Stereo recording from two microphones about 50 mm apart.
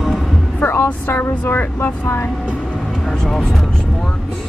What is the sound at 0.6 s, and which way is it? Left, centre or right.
Music, left.